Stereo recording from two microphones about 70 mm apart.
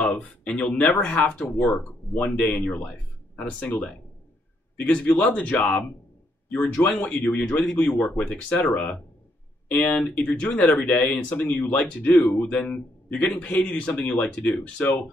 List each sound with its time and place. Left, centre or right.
0.0 s speech: centre
1.4 s speech: centre
2.3 s speech: centre